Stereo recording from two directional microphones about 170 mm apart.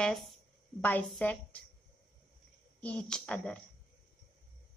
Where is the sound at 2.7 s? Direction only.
5° left (ahead or behind).